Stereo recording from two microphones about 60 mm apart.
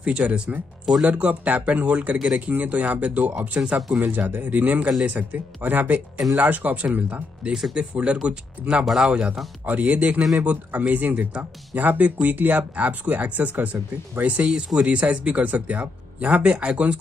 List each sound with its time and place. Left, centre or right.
0.0 s speech: centre
3.5 s speech: centre
4.1 s speech: right
8.8 s speech: centre
9.7 s speech: right